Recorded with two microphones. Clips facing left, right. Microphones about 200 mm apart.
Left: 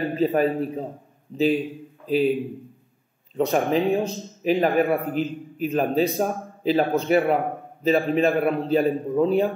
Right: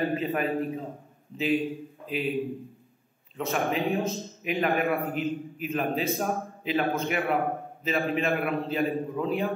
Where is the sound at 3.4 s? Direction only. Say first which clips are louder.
Left 7 dB; 35° left (ahead or behind).